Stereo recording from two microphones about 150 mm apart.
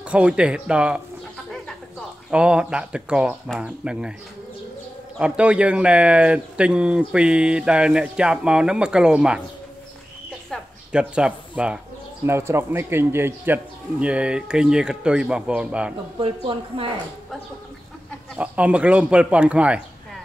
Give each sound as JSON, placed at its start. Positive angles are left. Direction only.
{"t": 0.1, "sound": "speech", "side_deg": -5}
{"t": 1.5, "sound": "a sound", "side_deg": 5}
{"t": 2.3, "sound": "speech", "side_deg": -5}
{"t": 5.2, "sound": "speech", "side_deg": -5}
{"t": 10.5, "sound": "a sound", "side_deg": -5}
{"t": 12.3, "sound": "speech", "side_deg": -15}
{"t": 16.2, "sound": "speech", "side_deg": -35}
{"t": 18.4, "sound": "speech", "side_deg": -10}